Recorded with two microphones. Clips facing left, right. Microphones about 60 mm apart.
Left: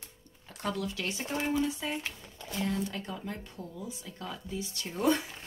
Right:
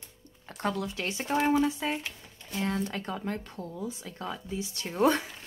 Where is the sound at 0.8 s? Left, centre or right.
Right.